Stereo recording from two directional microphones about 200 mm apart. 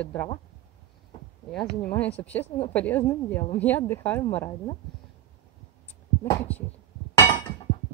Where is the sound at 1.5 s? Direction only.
5° left (ahead or behind).